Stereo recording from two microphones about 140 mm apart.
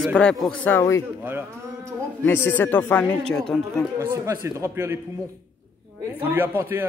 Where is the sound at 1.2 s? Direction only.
15° right (ahead or behind).